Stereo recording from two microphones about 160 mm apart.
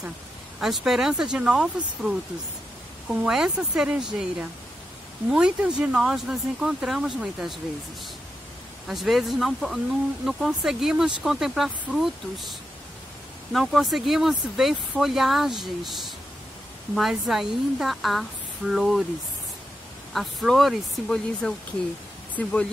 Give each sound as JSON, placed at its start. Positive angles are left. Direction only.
{"t": 0.6, "sound": "speech", "side_deg": 0}
{"t": 8.8, "sound": "speech", "side_deg": 0}
{"t": 20.1, "sound": "speech", "side_deg": 0}